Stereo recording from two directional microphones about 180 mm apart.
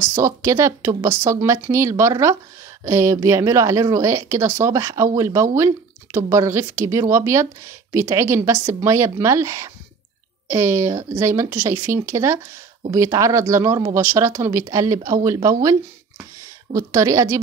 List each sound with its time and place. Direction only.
0.0 s speech: 15° right (ahead or behind)
16.7 s speech: 15° right (ahead or behind)